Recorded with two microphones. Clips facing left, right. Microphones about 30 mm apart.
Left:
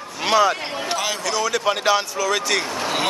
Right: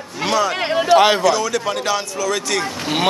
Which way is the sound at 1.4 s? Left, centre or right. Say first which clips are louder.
Even; centre.